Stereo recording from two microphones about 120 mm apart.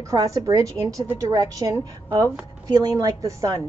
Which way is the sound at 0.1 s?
30° right (ahead or behind).